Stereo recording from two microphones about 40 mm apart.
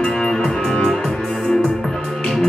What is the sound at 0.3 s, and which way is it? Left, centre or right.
Music, centre.